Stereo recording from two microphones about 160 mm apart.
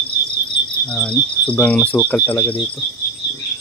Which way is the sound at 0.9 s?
5° left (ahead or behind).